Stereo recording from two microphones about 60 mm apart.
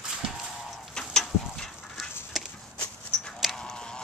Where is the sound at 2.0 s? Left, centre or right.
Centre.